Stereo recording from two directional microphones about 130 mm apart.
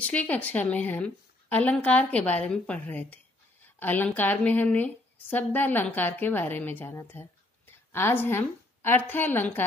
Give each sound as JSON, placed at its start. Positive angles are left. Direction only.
{"t": 0.0, "sound": "a woman's voice", "side_deg": 10}